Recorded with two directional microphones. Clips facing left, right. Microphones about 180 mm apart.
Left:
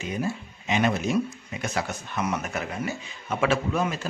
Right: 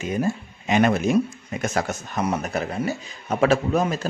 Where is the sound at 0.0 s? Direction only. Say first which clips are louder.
Right 5 dB; 50° right (ahead or behind).